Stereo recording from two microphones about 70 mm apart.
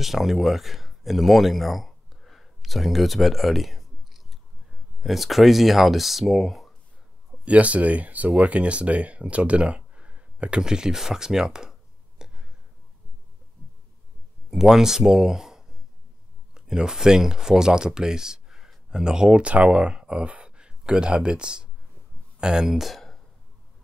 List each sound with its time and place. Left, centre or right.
0.0 s speech: centre
7.4 s speech: centre
12.2 s whispering: centre
14.6 s speech: centre